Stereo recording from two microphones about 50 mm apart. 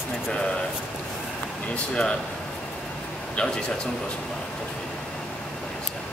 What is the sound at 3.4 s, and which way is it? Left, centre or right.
Speech, centre.